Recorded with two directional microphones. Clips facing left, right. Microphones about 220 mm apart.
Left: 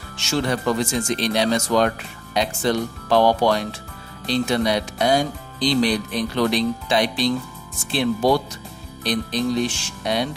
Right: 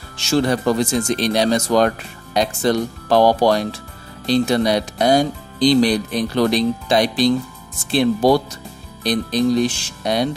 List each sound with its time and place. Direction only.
0.2 s speech: 35° right (ahead or behind)